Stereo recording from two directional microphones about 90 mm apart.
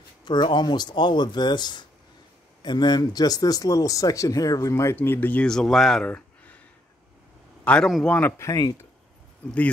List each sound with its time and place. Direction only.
0.2 s speech: 55° left (ahead or behind); by 4.9 s 35° left (ahead or behind)
4.9 s speech: 25° left (ahead or behind)
5.5 s speech: 5° left (ahead or behind)
6.0 s a sound: 15° left (ahead or behind)
7.6 s a man's voice: 10° left (ahead or behind)
8.4 s speech: 40° left (ahead or behind)